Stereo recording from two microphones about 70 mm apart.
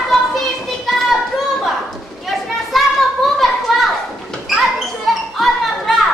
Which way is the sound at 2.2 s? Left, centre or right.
Centre.